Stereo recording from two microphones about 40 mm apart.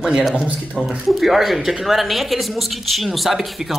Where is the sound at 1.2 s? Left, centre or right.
Centre.